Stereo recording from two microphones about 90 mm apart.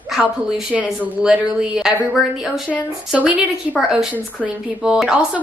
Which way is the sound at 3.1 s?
15° right (ahead or behind).